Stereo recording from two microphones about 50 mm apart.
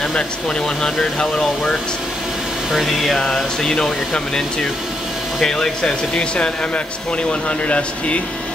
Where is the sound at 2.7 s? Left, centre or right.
Centre.